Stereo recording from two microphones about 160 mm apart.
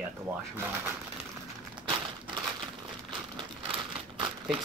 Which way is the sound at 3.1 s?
30° right (ahead or behind).